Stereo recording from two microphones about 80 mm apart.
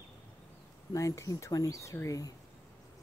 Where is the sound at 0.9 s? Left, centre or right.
Left.